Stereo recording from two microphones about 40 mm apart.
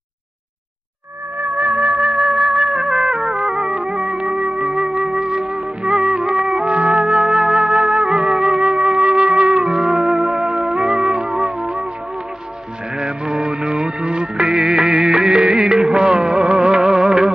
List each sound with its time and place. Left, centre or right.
1.8 s music: right; by 3.5 s centre
3.5 s music: centre
4.6 s music: centre
5.2 s music: right
6.6 s music: right
7.0 s music: centre
8.6 s music: right
13.0 s music: right
13.6 s music of bollywood: right